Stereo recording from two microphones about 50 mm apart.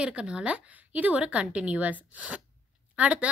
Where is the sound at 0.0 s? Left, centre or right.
Right.